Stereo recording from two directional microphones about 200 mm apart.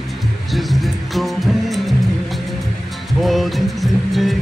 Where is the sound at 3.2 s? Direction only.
Centre (ahead or behind).